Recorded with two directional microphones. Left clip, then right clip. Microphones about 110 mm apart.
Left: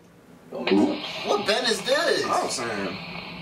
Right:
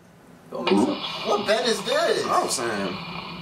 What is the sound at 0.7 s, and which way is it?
Speech, 25° right (ahead or behind).